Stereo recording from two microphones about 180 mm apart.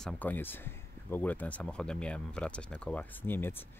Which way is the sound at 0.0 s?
10° left (ahead or behind).